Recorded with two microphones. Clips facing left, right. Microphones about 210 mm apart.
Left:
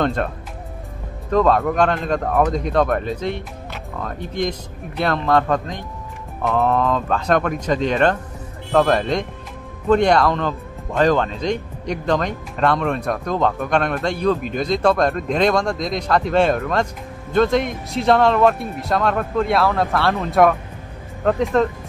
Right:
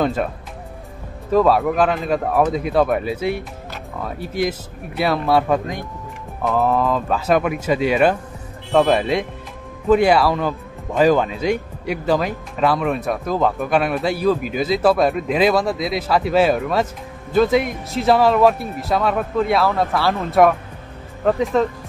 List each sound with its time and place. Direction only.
0.0 s speech: 5° right (ahead or behind)
1.3 s speech: 5° right (ahead or behind)